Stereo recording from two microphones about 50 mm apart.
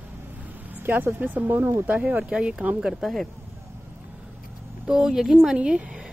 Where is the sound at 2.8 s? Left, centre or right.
Centre.